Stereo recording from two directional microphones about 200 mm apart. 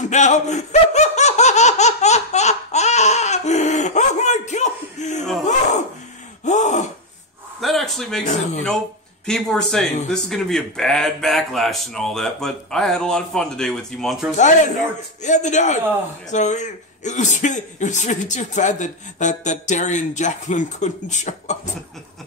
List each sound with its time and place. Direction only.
0.1 s laughter: 35° left (ahead or behind)
6.4 s gasp: 35° left (ahead or behind)
7.6 s a sound: centre (ahead or behind)
9.2 s speech: 5° left (ahead or behind)
14.3 s a man's voice: 35° left (ahead or behind)